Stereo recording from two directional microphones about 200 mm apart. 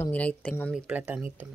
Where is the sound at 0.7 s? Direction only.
5° right (ahead or behind).